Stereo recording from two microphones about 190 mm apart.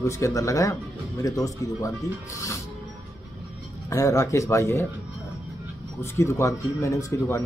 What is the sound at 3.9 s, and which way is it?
Speech, 15° left (ahead or behind).